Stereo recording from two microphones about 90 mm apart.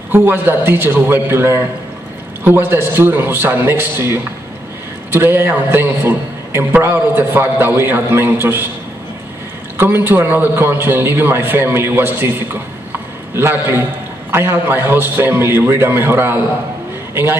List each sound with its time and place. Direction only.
0.1 s a man's voice: 25° right (ahead or behind)
9.8 s a man's voice: 25° right (ahead or behind)